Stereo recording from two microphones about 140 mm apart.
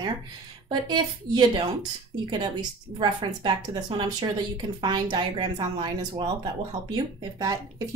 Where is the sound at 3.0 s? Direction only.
35° right (ahead or behind).